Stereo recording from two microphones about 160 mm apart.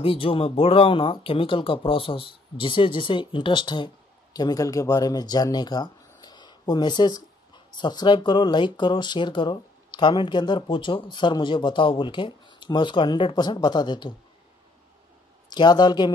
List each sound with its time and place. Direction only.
0.0 s speech: 35° left (ahead or behind)
15.5 s speech: 25° left (ahead or behind)